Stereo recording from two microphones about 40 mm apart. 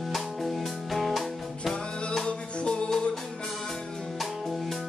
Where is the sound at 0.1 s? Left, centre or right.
Centre.